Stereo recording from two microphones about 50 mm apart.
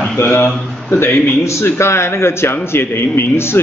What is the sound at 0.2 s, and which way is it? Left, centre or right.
Speech, left.